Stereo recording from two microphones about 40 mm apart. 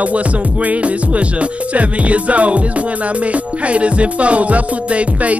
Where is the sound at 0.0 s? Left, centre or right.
Right.